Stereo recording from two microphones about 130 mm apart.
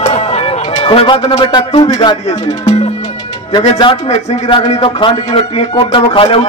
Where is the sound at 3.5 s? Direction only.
40° left (ahead or behind).